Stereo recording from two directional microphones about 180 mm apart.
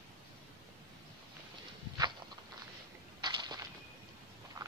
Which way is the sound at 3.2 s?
25° right (ahead or behind).